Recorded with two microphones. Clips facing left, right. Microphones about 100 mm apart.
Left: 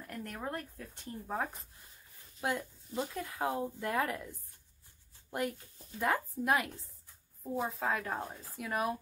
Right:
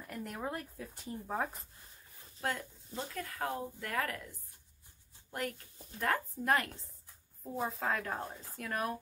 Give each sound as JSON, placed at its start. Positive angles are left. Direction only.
{"t": 0.0, "sound": "speech", "side_deg": -5}
{"t": 2.4, "sound": "speech", "side_deg": 20}
{"t": 5.3, "sound": "speech", "side_deg": 20}